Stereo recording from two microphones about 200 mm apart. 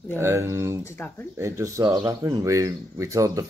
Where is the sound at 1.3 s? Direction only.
15° right (ahead or behind).